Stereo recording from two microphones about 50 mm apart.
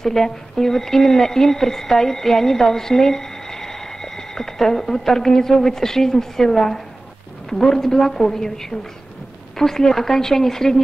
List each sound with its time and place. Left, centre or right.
0.0 s a woman's voice: centre